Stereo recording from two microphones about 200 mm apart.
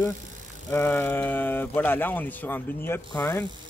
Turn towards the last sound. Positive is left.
turn(degrees=10)  # may be behind; listen again after turning